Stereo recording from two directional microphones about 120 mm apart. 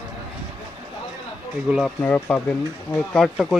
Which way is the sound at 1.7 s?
10° right (ahead or behind).